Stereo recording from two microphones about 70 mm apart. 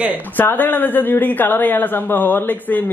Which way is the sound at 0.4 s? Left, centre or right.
Left.